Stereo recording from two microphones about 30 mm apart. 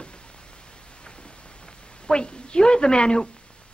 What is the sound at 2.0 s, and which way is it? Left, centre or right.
A woman's voice, left.